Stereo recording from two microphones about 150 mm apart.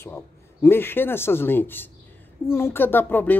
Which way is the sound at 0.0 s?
15° left (ahead or behind).